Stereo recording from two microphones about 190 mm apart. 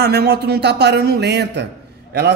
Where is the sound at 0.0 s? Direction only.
60° right (ahead or behind).